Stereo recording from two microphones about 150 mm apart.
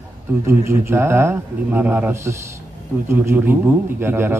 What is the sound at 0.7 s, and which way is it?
A man's voice, 15° right (ahead or behind).